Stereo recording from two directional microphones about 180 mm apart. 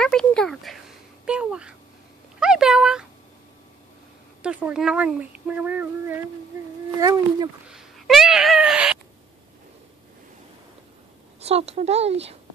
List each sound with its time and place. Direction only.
0.0 s a sound: 5° left (ahead or behind)
2.4 s speech: 5° right (ahead or behind)
4.4 s speech: 5° right (ahead or behind)
7.0 s speech: 20° right (ahead or behind)
7.6 s speech: 5° right (ahead or behind)
11.4 s speech: 35° right (ahead or behind)